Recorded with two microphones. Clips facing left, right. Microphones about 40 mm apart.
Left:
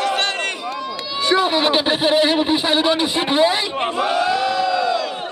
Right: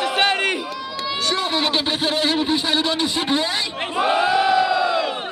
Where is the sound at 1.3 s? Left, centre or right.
Centre.